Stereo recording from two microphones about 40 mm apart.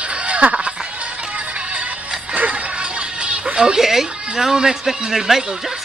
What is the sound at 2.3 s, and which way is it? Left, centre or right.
Music, right.